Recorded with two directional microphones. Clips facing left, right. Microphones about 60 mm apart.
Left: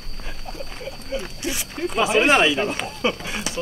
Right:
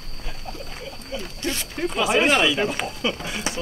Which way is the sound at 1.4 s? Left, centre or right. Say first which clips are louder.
Right 5 dB; centre.